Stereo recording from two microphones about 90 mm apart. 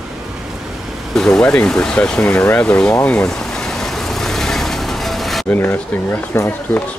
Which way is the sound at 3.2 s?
5° left (ahead or behind).